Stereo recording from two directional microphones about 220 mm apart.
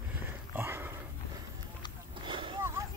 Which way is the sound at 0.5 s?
10° right (ahead or behind).